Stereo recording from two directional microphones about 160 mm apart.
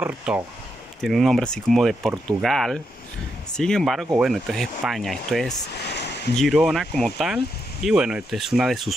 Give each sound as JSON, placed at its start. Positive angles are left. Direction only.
{"t": 0.0, "sound": "speech", "side_deg": -5}
{"t": 5.9, "sound": "a sound", "side_deg": 90}
{"t": 6.3, "sound": "speech", "side_deg": 0}